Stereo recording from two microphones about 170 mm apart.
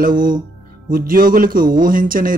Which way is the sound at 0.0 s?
55° right (ahead or behind).